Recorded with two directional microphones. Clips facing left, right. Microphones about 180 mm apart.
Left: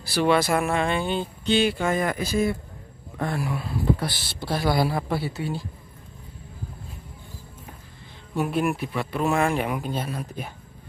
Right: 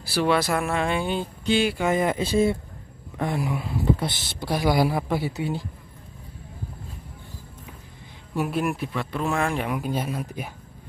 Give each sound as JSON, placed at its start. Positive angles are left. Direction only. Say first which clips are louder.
{"t": 0.0, "sound": "speech", "louder": "left 1 dB", "side_deg": -5}
{"t": 1.9, "sound": "speech", "louder": "right 2 dB", "side_deg": -20}
{"t": 8.4, "sound": "speech", "louder": "left 1 dB", "side_deg": 0}
{"t": 9.8, "sound": "speech", "louder": "right 2 dB", "side_deg": -15}